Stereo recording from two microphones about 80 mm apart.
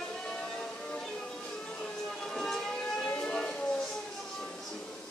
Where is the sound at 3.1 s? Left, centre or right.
Centre.